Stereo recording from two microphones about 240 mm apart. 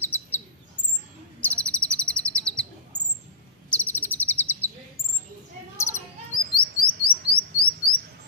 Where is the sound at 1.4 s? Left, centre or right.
Centre.